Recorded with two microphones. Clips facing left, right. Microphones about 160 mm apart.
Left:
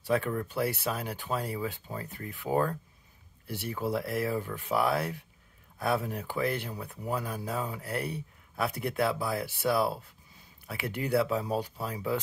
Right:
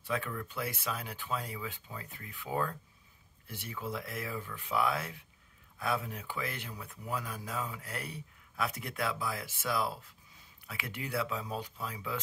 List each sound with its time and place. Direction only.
0.0 s speech: 40° left (ahead or behind)